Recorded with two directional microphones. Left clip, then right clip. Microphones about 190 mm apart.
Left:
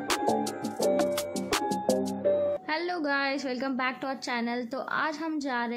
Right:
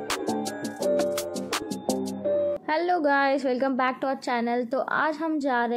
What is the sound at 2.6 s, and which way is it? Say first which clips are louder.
A woman's voice: right 6 dB; 15° right (ahead or behind).